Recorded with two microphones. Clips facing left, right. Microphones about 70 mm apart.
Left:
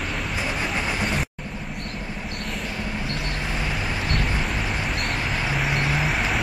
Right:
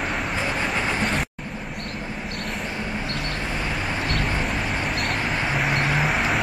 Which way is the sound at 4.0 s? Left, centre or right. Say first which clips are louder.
Right 1 dB; centre.